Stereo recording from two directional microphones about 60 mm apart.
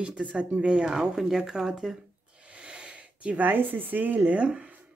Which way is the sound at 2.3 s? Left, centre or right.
Centre.